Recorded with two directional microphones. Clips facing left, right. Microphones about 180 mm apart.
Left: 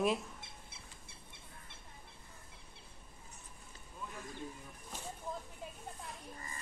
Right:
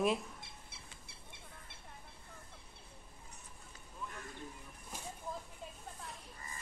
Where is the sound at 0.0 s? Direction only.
Centre (ahead or behind).